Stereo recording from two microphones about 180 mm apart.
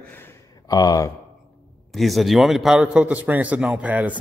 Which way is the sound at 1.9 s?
Centre (ahead or behind).